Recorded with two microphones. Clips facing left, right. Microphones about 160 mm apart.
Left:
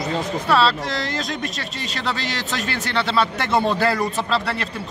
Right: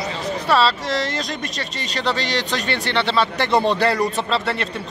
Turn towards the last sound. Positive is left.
turn(degrees=0)  # may be behind; listen again after turning